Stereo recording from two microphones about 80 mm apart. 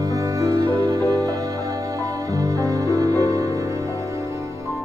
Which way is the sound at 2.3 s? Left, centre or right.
Right.